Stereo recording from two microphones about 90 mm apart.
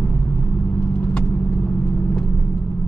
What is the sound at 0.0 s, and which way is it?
Vehicle, 20° left (ahead or behind).